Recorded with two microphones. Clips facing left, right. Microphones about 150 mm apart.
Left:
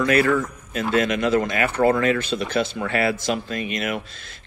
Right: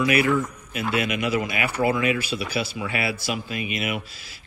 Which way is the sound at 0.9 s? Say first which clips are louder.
Left 5 dB; 40° left (ahead or behind).